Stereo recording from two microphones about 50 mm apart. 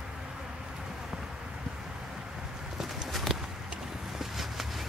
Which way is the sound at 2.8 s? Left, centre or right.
Centre.